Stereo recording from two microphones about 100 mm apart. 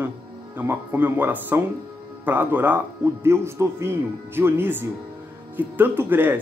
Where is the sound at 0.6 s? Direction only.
20° right (ahead or behind).